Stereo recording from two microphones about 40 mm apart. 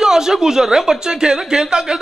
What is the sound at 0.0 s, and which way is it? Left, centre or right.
Speech, centre.